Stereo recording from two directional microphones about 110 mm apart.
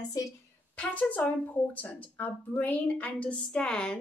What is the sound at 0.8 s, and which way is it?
Speech, 15° left (ahead or behind).